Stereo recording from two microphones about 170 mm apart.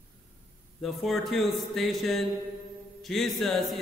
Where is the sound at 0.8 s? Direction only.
Centre (ahead or behind).